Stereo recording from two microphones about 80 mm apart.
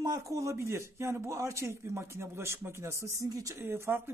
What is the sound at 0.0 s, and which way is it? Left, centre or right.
A man's voice, right.